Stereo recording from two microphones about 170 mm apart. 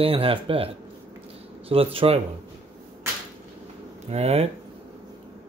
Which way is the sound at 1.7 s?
35° right (ahead or behind).